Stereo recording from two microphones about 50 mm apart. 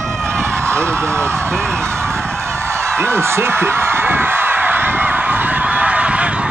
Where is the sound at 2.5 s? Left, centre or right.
Right.